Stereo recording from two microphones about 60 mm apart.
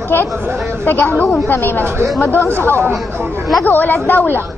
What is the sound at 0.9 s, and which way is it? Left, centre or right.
A woman's voice, left.